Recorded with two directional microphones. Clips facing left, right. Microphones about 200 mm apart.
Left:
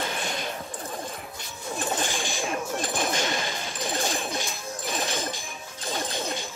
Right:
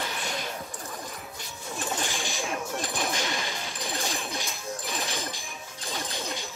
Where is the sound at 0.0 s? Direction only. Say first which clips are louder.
Left 3 dB; 25° left (ahead or behind).